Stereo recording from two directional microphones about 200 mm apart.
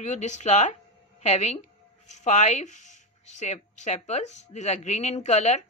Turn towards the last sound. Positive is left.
turn(degrees=35)  # may be behind; listen again after turning